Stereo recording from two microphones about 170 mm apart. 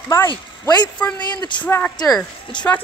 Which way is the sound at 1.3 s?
25° left (ahead or behind).